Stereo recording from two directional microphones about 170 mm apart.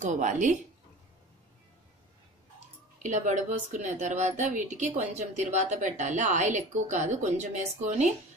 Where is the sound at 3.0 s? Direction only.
45° right (ahead or behind).